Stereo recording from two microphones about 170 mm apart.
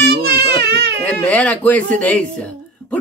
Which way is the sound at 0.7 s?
75° right (ahead or behind).